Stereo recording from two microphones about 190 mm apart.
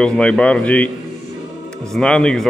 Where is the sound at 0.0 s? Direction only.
5° left (ahead or behind).